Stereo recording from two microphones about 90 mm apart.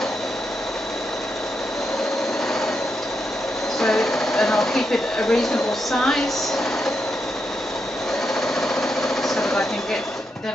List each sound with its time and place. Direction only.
3.8 s speech: 5° left (ahead or behind)
8.4 s sewing machine: 5° left (ahead or behind)